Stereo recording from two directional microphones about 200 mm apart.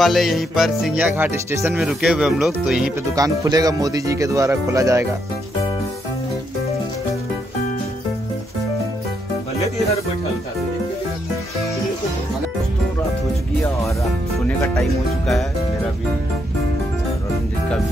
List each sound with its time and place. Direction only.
0.0 s speech: centre (ahead or behind)
3.2 s speech: 20° right (ahead or behind)
14.6 s speech: 5° left (ahead or behind)